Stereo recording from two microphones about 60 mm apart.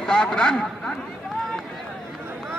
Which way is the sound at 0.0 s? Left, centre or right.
Centre.